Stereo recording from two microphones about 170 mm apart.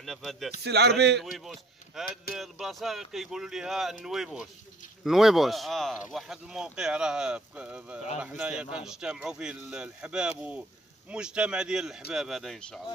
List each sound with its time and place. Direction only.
0.0 s a man's voice: centre (ahead or behind)
0.7 s a man's voice: 75° right (ahead or behind)
1.2 s a man's voice: centre (ahead or behind)